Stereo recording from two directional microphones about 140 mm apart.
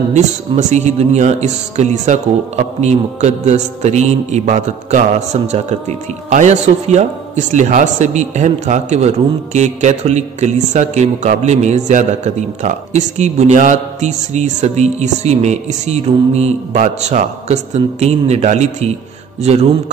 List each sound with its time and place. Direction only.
0.1 s speech: 55° right (ahead or behind)